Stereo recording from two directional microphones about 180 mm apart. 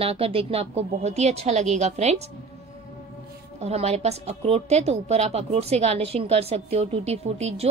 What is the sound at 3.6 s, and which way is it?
A woman's voice, 35° right (ahead or behind).